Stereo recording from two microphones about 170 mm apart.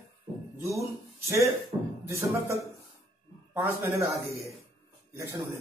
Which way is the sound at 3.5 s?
15° right (ahead or behind).